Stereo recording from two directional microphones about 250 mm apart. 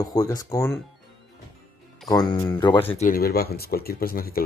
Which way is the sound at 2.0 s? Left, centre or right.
Centre.